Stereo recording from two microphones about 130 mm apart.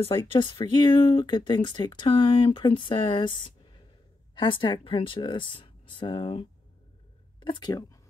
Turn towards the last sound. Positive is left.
turn(degrees=30)  # may be behind; listen again after turning